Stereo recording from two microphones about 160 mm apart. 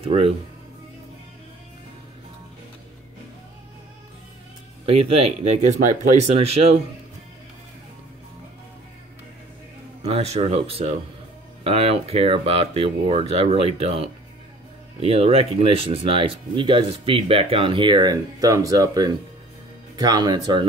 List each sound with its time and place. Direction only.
0.0 s speech: 40° right (ahead or behind)
4.8 s speech: 35° right (ahead or behind)
10.0 s speech: 40° right (ahead or behind)